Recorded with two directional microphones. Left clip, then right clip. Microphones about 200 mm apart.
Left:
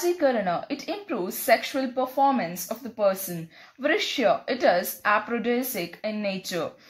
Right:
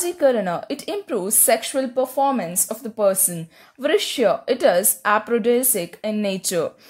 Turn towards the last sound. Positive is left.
turn(degrees=-50)  # may be behind; listen again after turning